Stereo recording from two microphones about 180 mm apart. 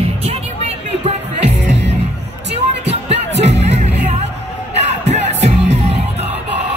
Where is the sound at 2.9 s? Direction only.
35° right (ahead or behind).